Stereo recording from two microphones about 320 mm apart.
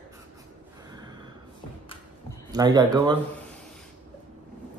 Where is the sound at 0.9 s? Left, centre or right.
Centre.